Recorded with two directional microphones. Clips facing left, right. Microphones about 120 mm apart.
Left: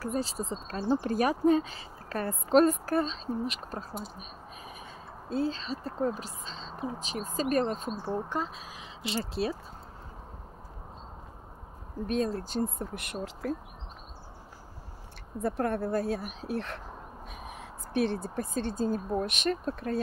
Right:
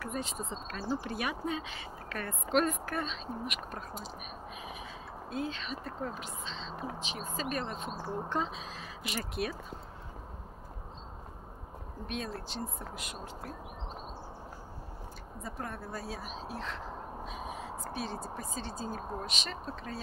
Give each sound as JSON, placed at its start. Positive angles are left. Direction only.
{"t": 0.0, "sound": "speech", "side_deg": 35}
{"t": 5.3, "sound": "speech", "side_deg": 35}
{"t": 8.3, "sound": "speech", "side_deg": 0}
{"t": 9.0, "sound": "speech", "side_deg": 25}
{"t": 12.1, "sound": "speech", "side_deg": 40}
{"t": 15.4, "sound": "speech", "side_deg": 60}